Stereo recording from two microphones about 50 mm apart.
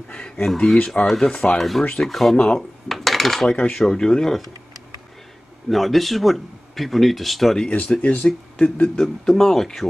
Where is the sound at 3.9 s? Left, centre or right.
Centre.